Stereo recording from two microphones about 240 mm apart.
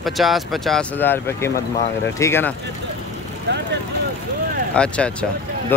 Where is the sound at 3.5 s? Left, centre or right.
Right.